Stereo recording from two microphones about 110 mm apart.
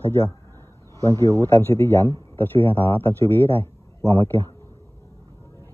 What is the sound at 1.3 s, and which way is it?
Speech, 25° left (ahead or behind).